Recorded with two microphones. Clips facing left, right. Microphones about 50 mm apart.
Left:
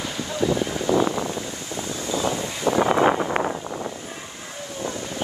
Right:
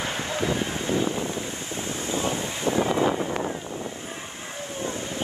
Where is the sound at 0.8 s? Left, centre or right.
Left.